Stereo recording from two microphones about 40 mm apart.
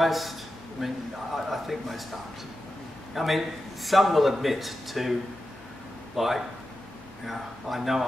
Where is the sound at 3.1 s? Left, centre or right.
Centre.